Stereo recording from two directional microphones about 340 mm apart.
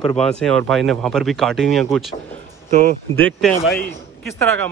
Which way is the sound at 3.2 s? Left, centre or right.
Centre.